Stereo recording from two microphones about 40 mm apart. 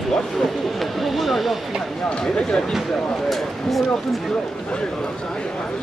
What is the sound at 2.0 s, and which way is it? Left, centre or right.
Speech, left.